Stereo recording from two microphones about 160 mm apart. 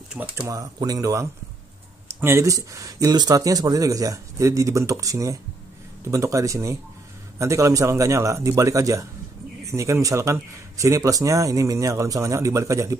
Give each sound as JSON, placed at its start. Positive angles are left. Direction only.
{"t": 0.1, "sound": "speech", "side_deg": -5}
{"t": 0.5, "sound": "speech", "side_deg": -20}